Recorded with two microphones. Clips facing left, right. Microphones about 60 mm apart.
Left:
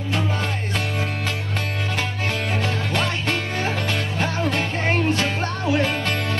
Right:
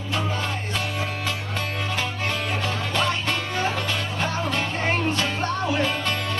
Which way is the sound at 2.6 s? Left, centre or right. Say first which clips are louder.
Right 1 dB; left.